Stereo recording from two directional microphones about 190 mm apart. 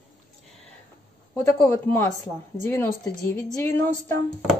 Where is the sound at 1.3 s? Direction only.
10° left (ahead or behind).